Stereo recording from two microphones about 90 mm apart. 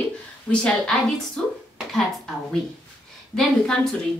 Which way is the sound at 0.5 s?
5° left (ahead or behind).